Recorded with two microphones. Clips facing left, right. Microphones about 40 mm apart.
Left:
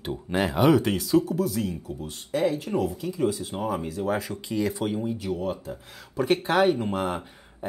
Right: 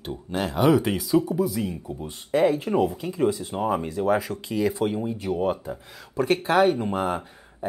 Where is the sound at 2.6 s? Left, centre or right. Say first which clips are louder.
Right 4 dB; right; by 5.2 s centre.